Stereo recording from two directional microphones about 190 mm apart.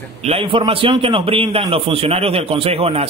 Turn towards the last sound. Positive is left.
turn(degrees=-30)  # may be behind; listen again after turning